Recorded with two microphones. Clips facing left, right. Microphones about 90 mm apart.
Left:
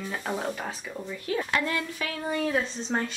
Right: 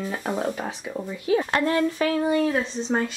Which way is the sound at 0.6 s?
20° right (ahead or behind).